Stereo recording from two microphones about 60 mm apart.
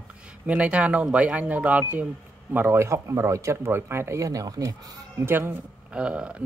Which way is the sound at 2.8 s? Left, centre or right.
Right.